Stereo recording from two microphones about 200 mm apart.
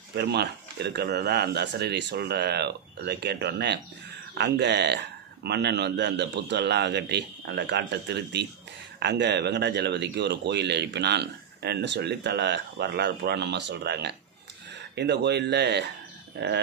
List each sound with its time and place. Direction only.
0.1 s speech: 55° right (ahead or behind)